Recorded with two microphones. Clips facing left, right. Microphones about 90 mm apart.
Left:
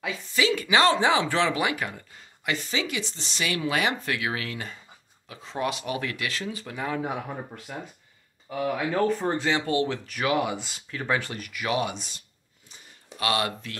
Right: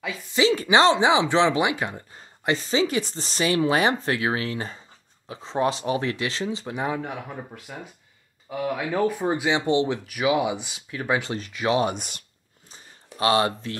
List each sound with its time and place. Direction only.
0.3 s speech: 30° right (ahead or behind)
7.0 s speech: 5° left (ahead or behind)
8.5 s speech: 5° right (ahead or behind)
10.0 s speech: 10° right (ahead or behind); by 11.9 s 30° right (ahead or behind)
11.9 s speech: 60° right (ahead or behind)
13.2 s speech: 30° right (ahead or behind)